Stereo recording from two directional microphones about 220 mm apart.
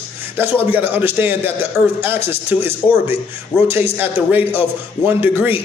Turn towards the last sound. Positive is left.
turn(degrees=-10)  # may be behind; listen again after turning